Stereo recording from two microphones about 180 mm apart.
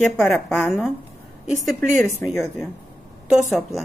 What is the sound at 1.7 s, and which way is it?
Speech, 15° left (ahead or behind).